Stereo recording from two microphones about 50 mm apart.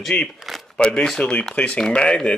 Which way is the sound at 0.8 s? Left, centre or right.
Centre.